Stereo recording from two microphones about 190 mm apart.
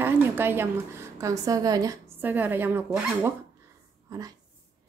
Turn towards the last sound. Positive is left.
turn(degrees=-20)  # may be behind; listen again after turning